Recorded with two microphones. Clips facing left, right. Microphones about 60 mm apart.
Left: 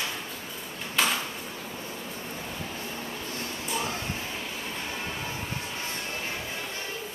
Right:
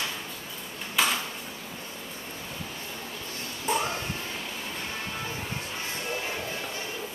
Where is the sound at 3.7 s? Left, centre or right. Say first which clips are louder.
Right 6 dB; right.